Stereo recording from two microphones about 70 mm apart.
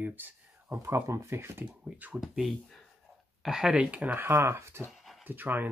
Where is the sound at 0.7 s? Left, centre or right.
Right.